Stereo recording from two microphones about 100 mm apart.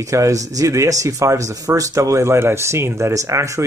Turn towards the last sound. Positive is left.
turn(degrees=-30)  # may be behind; listen again after turning